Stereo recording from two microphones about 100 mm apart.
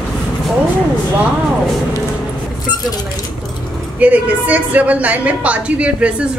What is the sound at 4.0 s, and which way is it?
A woman's voice, 15° right (ahead or behind).